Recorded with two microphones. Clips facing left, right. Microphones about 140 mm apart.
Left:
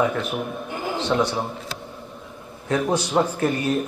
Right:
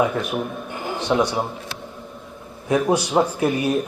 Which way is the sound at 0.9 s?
15° right (ahead or behind).